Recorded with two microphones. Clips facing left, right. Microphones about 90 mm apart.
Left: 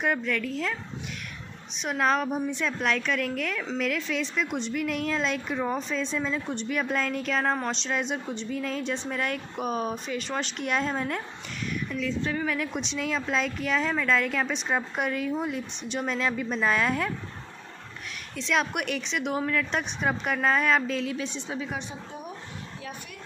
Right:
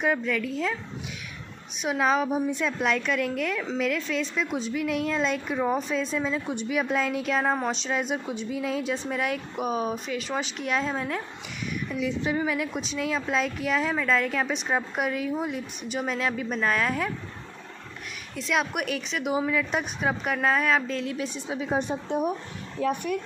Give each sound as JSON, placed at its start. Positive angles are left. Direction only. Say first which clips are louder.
{"t": 0.0, "sound": "a woman's voice", "louder": "right 2 dB", "side_deg": 0}
{"t": 1.8, "sound": "a woman's voice", "louder": "right 1 dB", "side_deg": -5}
{"t": 11.9, "sound": "a woman's voice", "louder": "right 3 dB", "side_deg": -15}
{"t": 18.3, "sound": "a woman's voice", "louder": "even", "side_deg": -5}
{"t": 21.2, "sound": "a woman's voice", "louder": "right 2 dB", "side_deg": -10}
{"t": 21.7, "sound": "a woman's voice", "louder": "right 10 dB", "side_deg": -55}